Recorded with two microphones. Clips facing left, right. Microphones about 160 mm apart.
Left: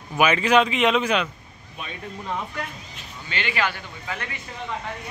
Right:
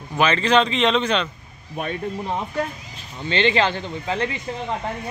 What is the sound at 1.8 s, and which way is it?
Speech, 50° right (ahead or behind).